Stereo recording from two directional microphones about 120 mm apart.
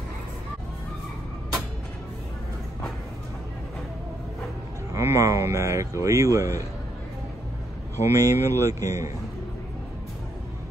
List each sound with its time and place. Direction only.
4.9 s speech: 25° right (ahead or behind)
8.0 s speech: 25° right (ahead or behind)